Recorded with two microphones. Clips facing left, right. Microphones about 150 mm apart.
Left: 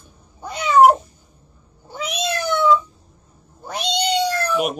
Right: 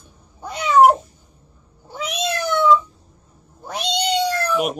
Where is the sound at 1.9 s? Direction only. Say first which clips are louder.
Even; centre (ahead or behind).